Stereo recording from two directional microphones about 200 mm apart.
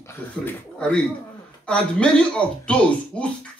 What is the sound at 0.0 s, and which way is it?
Speech, 10° left (ahead or behind).